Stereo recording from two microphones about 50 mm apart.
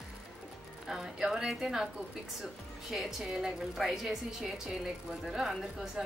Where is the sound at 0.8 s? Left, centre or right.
Centre.